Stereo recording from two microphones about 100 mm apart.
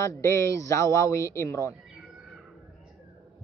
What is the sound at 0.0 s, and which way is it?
A woman's voice, 30° left (ahead or behind).